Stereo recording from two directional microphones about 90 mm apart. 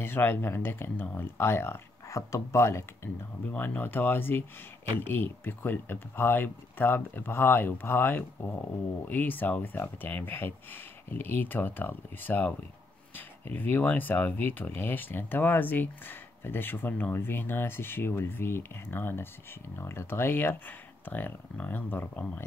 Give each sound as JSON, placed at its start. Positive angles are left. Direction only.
{"t": 0.0, "sound": "speech", "side_deg": 25}